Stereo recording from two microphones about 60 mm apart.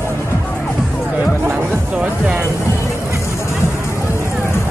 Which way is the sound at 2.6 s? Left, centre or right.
Left.